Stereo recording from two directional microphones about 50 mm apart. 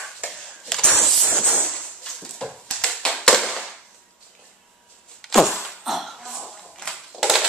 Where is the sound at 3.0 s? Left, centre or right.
Centre.